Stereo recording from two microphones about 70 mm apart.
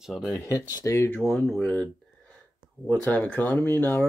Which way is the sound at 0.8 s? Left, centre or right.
Left.